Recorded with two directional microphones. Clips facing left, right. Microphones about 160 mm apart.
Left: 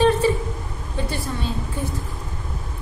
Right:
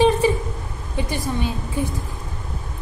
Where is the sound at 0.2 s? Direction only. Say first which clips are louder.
Right 1 dB; 15° right (ahead or behind).